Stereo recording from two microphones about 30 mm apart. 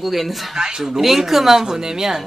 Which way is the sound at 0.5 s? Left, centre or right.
Right.